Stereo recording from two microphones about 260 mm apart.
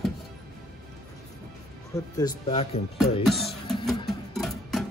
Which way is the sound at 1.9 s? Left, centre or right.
Centre.